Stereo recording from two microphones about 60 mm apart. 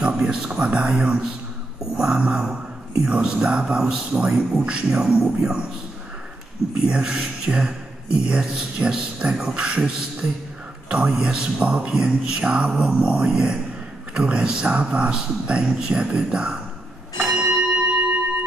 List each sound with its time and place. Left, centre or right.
0.0 s speech: centre
6.9 s speech: centre
17.2 s bell: centre